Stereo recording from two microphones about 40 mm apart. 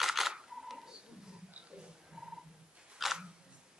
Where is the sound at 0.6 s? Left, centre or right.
Centre.